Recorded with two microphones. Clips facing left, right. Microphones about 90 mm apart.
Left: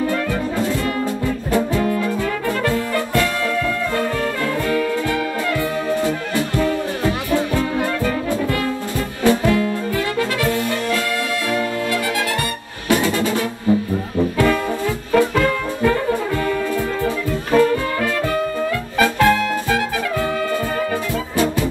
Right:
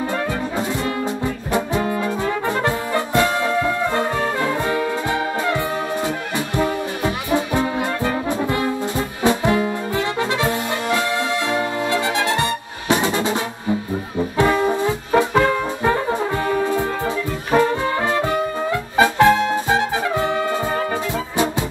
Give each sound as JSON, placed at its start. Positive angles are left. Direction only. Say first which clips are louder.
{"t": 0.6, "sound": "music", "louder": "left 2 dB", "side_deg": -20}
{"t": 2.6, "sound": "brass instrument", "louder": "left 1 dB", "side_deg": -20}
{"t": 6.0, "sound": "music", "louder": "left 3 dB", "side_deg": -20}
{"t": 14.3, "sound": "brass instrument", "louder": "right 4 dB", "side_deg": -25}
{"t": 18.9, "sound": "music", "louder": "right 2 dB", "side_deg": -20}